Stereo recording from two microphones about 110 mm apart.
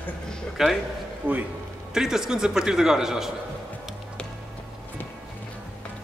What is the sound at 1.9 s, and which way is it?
A man's voice, 5° right (ahead or behind).